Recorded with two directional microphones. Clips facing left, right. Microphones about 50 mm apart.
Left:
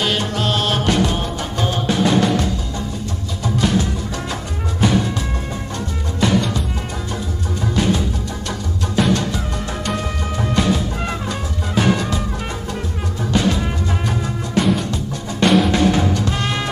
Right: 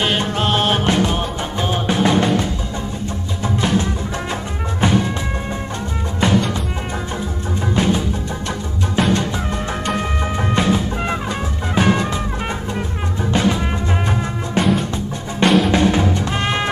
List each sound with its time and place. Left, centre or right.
0.0 s music: right
4.3 s music: right
6.2 s music: right
7.8 s music: right
9.0 s music: right
15.4 s music: centre
16.3 s music: right